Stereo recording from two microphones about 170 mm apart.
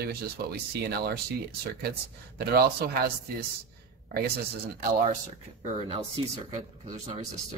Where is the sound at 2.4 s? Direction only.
65° right (ahead or behind).